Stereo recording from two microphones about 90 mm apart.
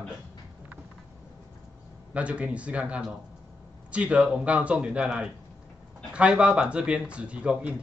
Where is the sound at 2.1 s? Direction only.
15° right (ahead or behind).